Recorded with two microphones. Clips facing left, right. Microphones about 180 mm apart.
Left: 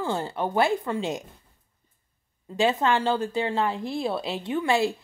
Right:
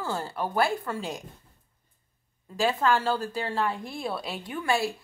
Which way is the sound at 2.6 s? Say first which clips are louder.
Left 3 dB; 20° left (ahead or behind).